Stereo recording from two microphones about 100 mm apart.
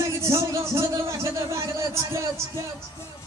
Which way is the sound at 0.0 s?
30° right (ahead or behind).